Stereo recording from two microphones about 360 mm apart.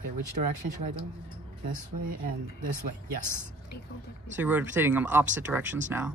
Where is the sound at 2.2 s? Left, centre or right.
Right.